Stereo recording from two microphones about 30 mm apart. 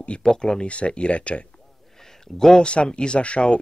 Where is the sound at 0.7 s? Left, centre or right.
Left.